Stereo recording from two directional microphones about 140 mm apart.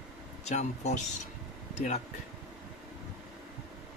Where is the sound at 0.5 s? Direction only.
55° left (ahead or behind).